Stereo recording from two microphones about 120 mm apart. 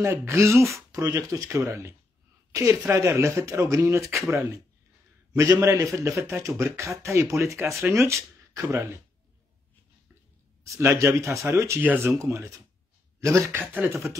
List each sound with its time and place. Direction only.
0.0 s speech: 20° right (ahead or behind)
10.6 s speech: 25° right (ahead or behind)
11.8 s speech: 15° right (ahead or behind)
12.2 s speech: 25° right (ahead or behind)